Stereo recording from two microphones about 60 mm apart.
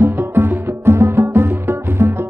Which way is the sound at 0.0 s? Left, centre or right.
Right.